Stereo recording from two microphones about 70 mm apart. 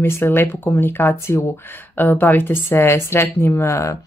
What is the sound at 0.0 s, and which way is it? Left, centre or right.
Speech, left.